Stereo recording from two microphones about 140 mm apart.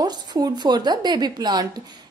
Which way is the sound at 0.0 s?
30° right (ahead or behind).